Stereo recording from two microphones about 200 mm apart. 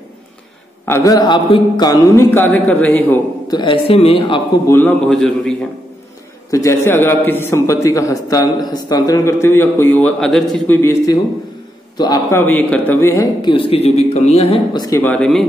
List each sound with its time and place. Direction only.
0.8 s a man's voice: 15° left (ahead or behind)
3.4 s a man's voice: 25° left (ahead or behind)
4.7 s a man's voice: 5° left (ahead or behind)
6.5 s a man's voice: 15° left (ahead or behind)